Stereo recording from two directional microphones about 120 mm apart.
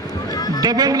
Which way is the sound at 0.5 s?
35° right (ahead or behind).